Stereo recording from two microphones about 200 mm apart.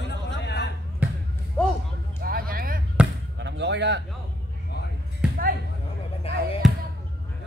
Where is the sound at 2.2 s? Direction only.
45° right (ahead or behind).